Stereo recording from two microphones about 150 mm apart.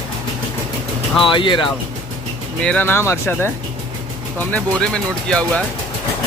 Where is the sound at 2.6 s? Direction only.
10° left (ahead or behind).